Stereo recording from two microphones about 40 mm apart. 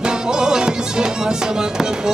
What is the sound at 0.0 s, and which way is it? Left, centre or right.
Music, centre.